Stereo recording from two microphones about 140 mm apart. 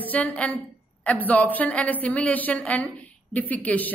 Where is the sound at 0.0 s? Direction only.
10° left (ahead or behind).